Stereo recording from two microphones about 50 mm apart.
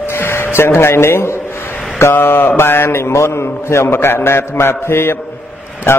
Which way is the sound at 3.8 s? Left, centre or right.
Left.